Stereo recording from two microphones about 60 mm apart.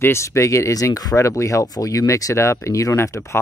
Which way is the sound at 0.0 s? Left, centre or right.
Left.